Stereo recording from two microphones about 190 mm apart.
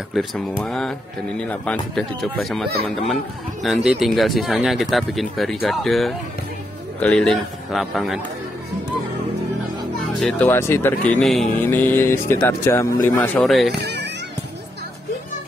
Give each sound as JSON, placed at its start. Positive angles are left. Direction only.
{"t": 0.7, "sound": "speech", "side_deg": 0}
{"t": 3.6, "sound": "speech", "side_deg": 0}
{"t": 10.2, "sound": "speech", "side_deg": 10}
{"t": 13.7, "sound": "speech", "side_deg": -60}